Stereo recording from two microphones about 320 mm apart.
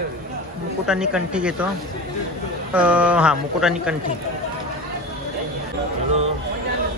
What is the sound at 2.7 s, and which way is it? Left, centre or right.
Speech, centre.